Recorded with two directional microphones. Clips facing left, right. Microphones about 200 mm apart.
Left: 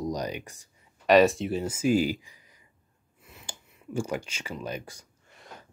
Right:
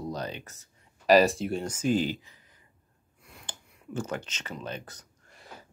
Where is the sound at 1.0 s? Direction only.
Centre (ahead or behind).